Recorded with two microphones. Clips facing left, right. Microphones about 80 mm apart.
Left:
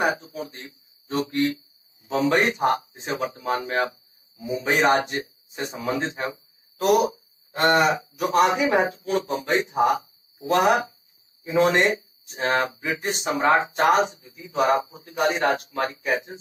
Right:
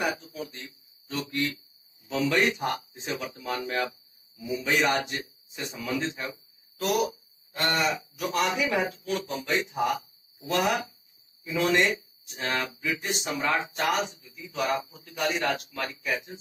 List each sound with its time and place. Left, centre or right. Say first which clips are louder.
0.0 s speech: left 6 dB; left